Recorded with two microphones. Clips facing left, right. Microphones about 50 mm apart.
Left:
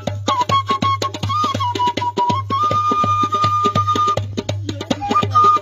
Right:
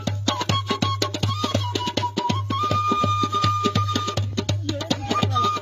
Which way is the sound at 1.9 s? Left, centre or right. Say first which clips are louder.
Left 7 dB; left.